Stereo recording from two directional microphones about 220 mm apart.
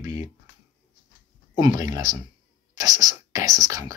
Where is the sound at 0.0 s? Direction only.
35° left (ahead or behind).